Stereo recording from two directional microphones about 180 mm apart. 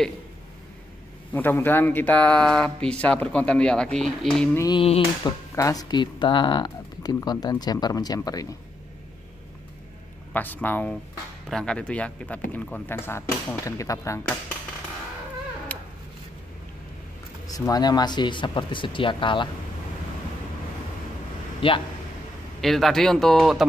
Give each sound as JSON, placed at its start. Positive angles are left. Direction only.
{"t": 1.3, "sound": "speech", "side_deg": 10}
{"t": 4.6, "sound": "speech", "side_deg": 20}
{"t": 4.8, "sound": "a sound", "side_deg": 30}
{"t": 5.6, "sound": "speech", "side_deg": 20}
{"t": 10.3, "sound": "speech", "side_deg": 10}
{"t": 15.7, "sound": "cat", "side_deg": 10}
{"t": 17.5, "sound": "speech", "side_deg": 20}
{"t": 21.5, "sound": "speech", "side_deg": 30}
{"t": 22.6, "sound": "speech", "side_deg": 0}